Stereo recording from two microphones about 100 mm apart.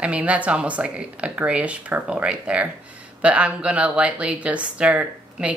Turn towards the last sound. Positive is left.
turn(degrees=-15)  # may be behind; listen again after turning